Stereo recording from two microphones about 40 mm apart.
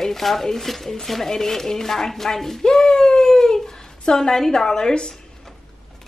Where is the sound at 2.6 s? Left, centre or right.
Centre.